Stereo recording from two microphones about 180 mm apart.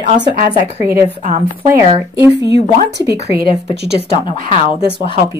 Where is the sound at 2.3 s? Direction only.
70° right (ahead or behind).